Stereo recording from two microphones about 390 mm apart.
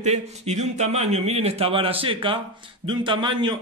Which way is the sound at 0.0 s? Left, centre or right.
Centre.